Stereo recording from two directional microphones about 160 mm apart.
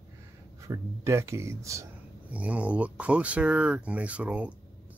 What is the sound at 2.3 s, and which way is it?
Speech, 10° right (ahead or behind).